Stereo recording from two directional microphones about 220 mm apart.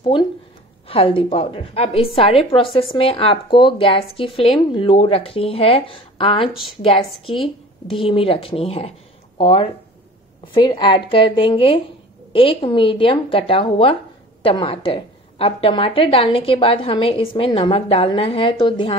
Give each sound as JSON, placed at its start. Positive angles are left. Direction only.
{"t": 0.0, "sound": "a woman's voice", "side_deg": 20}
{"t": 6.5, "sound": "a woman's voice", "side_deg": 0}
{"t": 6.8, "sound": "a woman's voice", "side_deg": 25}